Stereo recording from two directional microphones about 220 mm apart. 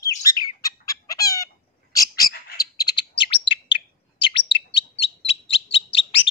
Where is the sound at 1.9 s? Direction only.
15° left (ahead or behind).